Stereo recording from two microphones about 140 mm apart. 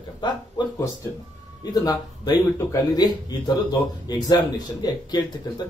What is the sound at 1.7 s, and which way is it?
Speech, 25° left (ahead or behind).